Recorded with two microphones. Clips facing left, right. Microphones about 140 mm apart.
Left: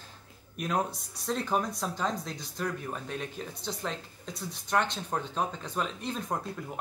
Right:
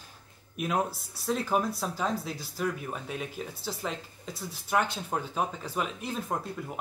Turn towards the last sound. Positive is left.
turn(degrees=-5)  # may be behind; listen again after turning